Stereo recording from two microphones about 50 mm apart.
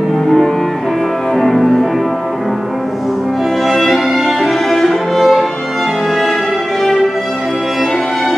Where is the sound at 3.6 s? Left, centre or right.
Centre.